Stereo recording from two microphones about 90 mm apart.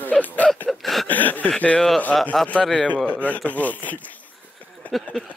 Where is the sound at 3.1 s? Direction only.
15° left (ahead or behind).